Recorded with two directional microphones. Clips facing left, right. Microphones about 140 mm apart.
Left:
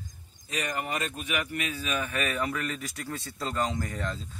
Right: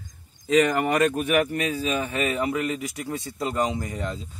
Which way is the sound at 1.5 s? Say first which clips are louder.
Right 6 dB; 35° right (ahead or behind).